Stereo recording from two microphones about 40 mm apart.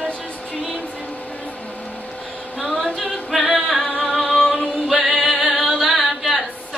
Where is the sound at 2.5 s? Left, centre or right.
Left.